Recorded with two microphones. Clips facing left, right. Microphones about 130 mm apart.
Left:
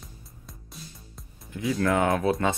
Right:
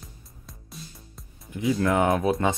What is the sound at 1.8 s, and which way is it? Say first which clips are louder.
Speech: even; 20° right (ahead or behind).